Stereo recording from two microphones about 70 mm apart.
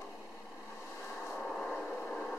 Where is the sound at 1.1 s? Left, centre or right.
Centre.